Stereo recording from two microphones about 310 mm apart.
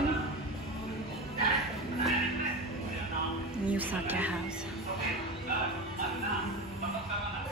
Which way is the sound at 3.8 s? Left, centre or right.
Centre.